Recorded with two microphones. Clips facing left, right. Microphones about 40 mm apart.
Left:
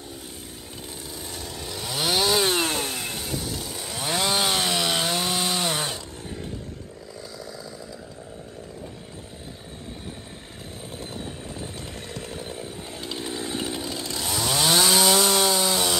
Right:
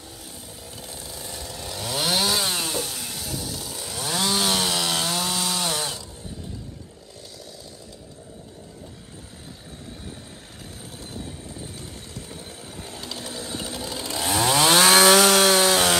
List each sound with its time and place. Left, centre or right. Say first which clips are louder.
0.7 s chainsaw: left 1 dB; centre
2.5 s chainsaw: left 3 dB; left
3.0 s chainsaw: left 2 dB; left
3.8 s chainsaw: even; centre
12.6 s chainsaw: left 2 dB; centre
14.0 s chainsaw: right 7 dB; right
14.5 s chainsaw: right 4 dB; right